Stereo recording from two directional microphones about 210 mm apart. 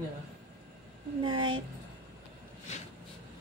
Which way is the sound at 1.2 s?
25° right (ahead or behind).